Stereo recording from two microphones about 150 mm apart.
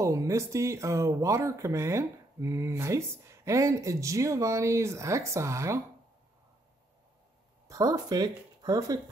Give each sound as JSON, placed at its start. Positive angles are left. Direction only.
{"t": 0.0, "sound": "speech", "side_deg": -20}
{"t": 7.6, "sound": "speech", "side_deg": -25}